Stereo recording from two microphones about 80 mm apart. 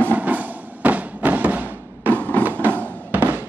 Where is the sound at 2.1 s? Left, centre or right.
Left.